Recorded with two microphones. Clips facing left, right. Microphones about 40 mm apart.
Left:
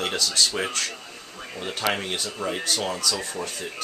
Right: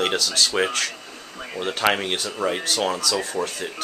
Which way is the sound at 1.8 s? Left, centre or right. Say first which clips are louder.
Right 4 dB; right.